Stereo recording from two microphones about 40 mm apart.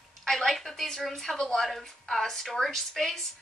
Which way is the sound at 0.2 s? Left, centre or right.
Centre.